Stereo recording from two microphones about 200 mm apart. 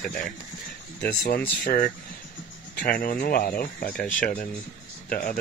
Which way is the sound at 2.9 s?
45° left (ahead or behind).